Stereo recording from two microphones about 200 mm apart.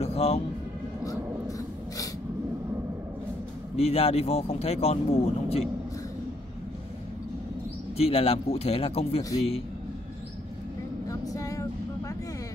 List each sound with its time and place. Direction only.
0.0 s music: 30° left (ahead or behind)
3.7 s speech: 30° left (ahead or behind)
8.0 s a man's voice: 30° left (ahead or behind)
11.1 s vehicle: 15° left (ahead or behind)